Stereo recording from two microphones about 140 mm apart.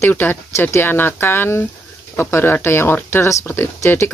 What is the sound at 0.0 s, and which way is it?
Speech, 15° left (ahead or behind).